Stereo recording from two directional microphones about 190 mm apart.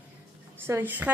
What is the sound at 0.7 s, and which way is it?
Speech, 10° right (ahead or behind).